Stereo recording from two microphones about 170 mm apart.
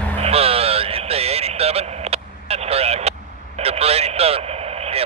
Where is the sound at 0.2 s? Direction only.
35° right (ahead or behind).